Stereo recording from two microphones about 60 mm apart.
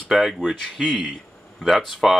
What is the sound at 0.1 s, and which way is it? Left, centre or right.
Speech, centre.